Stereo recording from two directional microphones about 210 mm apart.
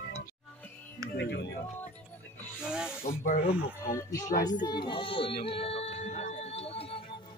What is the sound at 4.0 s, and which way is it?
Music, 15° left (ahead or behind).